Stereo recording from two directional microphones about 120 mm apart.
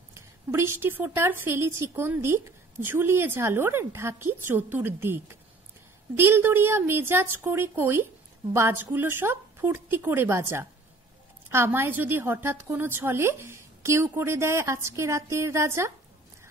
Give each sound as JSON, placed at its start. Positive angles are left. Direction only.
{"t": 0.1, "sound": "a woman's voice", "side_deg": -20}